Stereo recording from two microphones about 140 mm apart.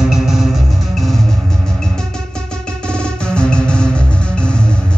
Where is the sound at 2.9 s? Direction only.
5° left (ahead or behind).